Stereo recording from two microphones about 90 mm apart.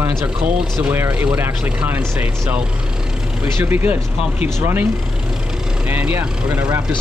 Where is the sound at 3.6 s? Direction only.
25° right (ahead or behind).